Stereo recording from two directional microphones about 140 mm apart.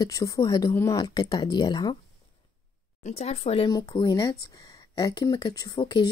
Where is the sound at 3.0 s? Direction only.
50° left (ahead or behind).